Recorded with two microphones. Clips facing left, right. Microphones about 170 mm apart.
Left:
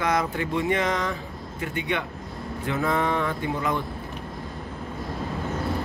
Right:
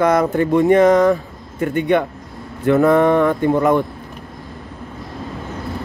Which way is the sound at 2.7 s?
55° right (ahead or behind).